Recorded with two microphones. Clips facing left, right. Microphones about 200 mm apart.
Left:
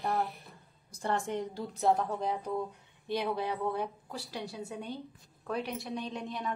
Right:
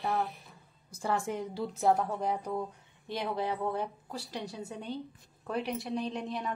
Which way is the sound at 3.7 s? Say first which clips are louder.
Even; 15° left (ahead or behind).